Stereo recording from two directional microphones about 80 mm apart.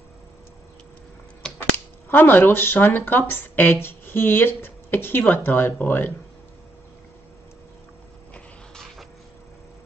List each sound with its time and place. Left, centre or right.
2.0 s speech: left